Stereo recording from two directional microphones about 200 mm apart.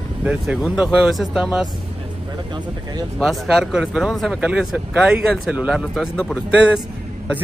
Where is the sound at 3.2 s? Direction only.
Centre (ahead or behind).